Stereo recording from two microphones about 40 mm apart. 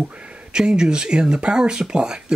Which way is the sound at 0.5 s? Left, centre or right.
Right.